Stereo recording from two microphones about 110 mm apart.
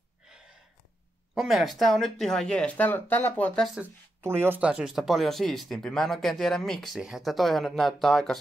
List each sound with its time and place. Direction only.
1.3 s speech: centre (ahead or behind); by 3.6 s 15° left (ahead or behind)
4.2 s speech: 20° right (ahead or behind)
4.6 s speech: 10° right (ahead or behind)